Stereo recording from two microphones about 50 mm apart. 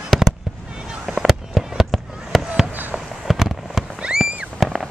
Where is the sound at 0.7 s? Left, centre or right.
Centre.